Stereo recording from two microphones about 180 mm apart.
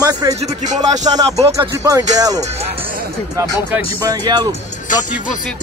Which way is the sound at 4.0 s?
20° right (ahead or behind).